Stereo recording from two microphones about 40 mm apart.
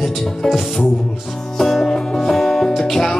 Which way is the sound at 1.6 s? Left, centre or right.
Centre.